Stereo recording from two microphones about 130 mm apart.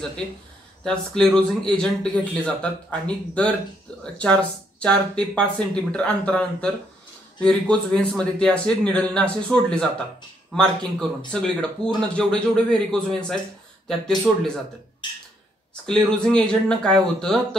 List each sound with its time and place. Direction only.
0.8 s speech: 5° left (ahead or behind)
15.0 s a sound: 40° left (ahead or behind)
15.7 s speech: 5° left (ahead or behind)